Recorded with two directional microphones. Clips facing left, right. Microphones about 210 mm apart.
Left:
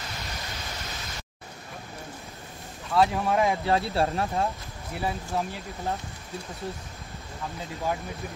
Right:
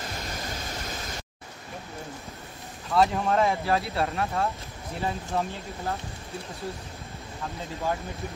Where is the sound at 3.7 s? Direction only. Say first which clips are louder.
Left 2 dB; 30° left (ahead or behind).